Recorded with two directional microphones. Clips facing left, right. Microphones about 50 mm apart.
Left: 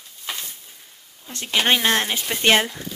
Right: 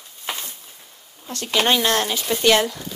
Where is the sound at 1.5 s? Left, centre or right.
Left.